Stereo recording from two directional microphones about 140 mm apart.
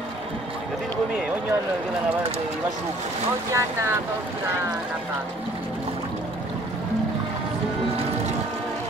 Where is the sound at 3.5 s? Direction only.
20° right (ahead or behind).